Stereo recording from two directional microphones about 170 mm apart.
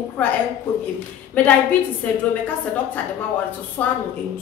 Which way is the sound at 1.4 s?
10° left (ahead or behind).